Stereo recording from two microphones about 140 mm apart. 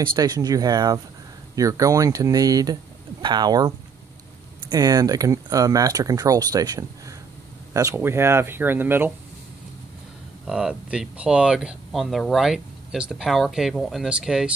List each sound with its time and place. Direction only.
0.0 s speech: 30° right (ahead or behind); by 9.1 s 15° right (ahead or behind)
10.4 s speech: 5° right (ahead or behind)